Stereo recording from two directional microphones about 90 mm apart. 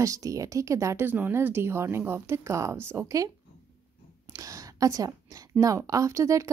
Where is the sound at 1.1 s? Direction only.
20° right (ahead or behind); by 3.3 s 35° right (ahead or behind).